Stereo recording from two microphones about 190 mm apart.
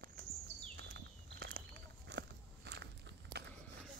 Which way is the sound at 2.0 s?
65° right (ahead or behind).